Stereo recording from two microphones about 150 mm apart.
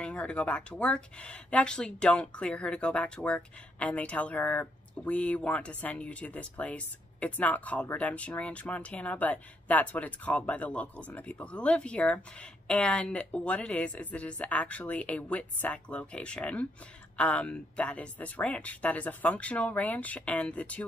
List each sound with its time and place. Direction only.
0.0 s speech: 10° left (ahead or behind)